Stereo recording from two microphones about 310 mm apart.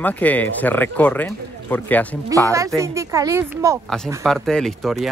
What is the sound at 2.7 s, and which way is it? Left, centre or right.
A woman's voice, centre.